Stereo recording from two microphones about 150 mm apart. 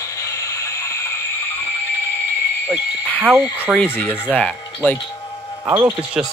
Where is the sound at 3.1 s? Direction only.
10° left (ahead or behind).